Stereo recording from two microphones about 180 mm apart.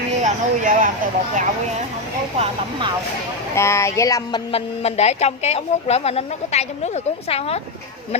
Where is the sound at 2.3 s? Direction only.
35° right (ahead or behind).